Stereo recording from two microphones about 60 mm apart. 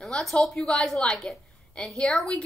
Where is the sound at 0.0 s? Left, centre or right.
Centre.